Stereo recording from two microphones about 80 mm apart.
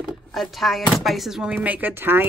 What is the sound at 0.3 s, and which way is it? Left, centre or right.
Speech, centre.